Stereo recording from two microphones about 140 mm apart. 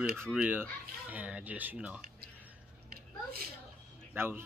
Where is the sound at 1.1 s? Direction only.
10° right (ahead or behind).